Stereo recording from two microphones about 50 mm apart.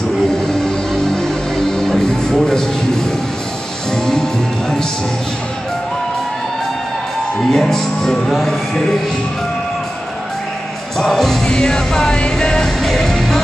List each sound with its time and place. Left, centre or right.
0.3 s music: centre
7.5 s speech: centre
11.0 s music: centre
11.4 s speech: centre
12.2 s music: centre